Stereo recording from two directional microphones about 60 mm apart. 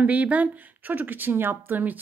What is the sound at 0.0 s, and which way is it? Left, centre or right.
Speech, right.